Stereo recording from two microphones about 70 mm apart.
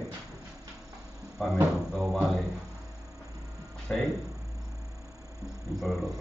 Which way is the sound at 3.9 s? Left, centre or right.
Centre.